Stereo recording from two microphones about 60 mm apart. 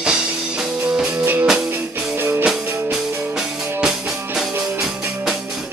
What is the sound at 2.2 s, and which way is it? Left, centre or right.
Music, right.